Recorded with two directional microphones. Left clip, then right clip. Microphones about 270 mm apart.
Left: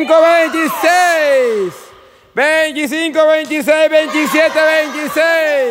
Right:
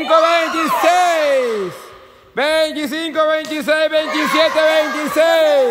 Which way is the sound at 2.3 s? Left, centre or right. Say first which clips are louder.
Left 3 dB; centre.